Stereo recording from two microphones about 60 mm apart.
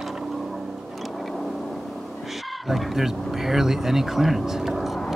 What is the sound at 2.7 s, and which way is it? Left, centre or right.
Speech, centre.